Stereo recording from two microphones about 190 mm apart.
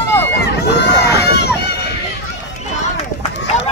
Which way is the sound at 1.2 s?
60° left (ahead or behind).